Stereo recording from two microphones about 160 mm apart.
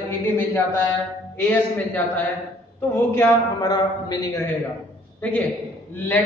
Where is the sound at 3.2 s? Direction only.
25° left (ahead or behind).